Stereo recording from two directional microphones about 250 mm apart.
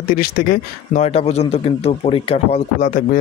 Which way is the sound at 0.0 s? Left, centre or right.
Left.